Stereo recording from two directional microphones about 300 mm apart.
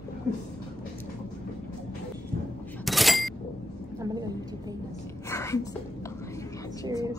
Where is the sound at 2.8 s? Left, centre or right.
Centre.